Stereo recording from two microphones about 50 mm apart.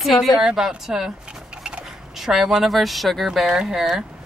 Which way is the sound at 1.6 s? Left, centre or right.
Centre.